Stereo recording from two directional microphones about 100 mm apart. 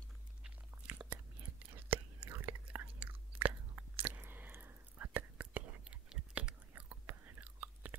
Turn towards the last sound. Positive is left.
turn(degrees=-15)  # may be behind; listen again after turning